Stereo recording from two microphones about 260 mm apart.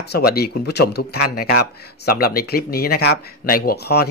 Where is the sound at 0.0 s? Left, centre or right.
Left.